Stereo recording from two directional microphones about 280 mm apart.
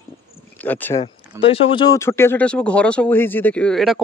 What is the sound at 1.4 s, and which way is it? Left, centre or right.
A man's voice, centre.